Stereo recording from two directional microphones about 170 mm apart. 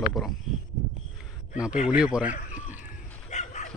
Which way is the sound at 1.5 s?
5° right (ahead or behind).